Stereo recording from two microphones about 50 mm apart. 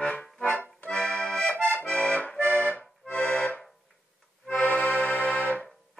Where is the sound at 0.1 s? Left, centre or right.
Left.